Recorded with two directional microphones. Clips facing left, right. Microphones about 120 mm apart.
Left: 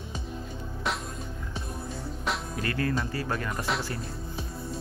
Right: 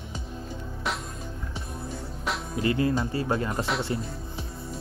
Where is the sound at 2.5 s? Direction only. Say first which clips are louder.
Right 7 dB; 20° right (ahead or behind).